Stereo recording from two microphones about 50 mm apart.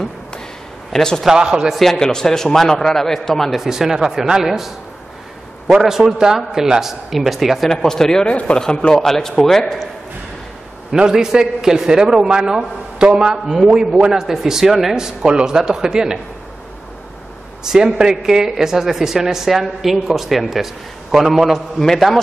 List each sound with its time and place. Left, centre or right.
0.9 s a man's voice: centre
1.2 s speech: centre
1.7 s a man's voice: centre
3.6 s speech: centre
7.7 s a man's voice: centre
8.3 s a man's voice: left; by 9.8 s centre
11.0 s speech: centre
17.6 s a man's voice: centre